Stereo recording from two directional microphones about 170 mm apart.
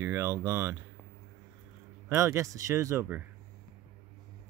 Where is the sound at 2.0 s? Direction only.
15° right (ahead or behind).